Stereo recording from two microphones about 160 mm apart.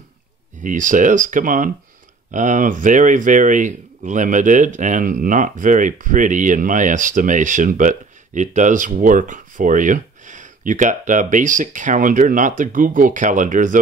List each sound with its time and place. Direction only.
0.6 s speech: 55° right (ahead or behind)